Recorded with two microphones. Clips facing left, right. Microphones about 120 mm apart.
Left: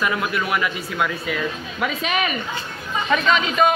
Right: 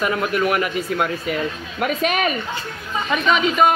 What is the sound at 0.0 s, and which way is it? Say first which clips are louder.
A man's voice: right 3 dB; 45° right (ahead or behind).